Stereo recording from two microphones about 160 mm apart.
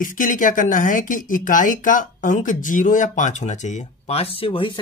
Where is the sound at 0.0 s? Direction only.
55° left (ahead or behind).